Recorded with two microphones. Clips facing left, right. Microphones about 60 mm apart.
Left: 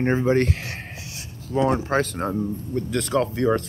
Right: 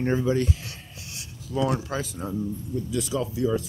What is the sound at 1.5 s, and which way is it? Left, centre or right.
Speech, left.